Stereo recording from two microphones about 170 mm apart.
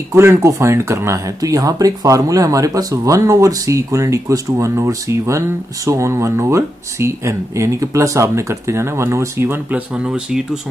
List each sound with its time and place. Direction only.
0.1 s speech: 15° right (ahead or behind)